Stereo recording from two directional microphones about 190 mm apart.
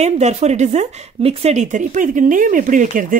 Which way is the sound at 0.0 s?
35° right (ahead or behind).